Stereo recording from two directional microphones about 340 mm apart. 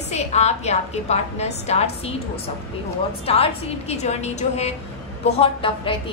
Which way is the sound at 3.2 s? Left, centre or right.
Centre.